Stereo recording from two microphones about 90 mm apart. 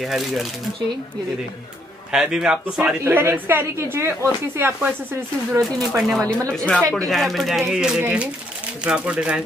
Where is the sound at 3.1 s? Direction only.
25° right (ahead or behind).